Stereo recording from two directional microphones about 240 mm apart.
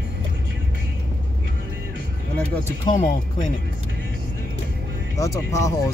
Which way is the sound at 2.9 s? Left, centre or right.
Centre.